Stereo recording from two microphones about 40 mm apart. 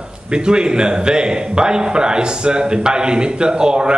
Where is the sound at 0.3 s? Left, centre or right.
Right.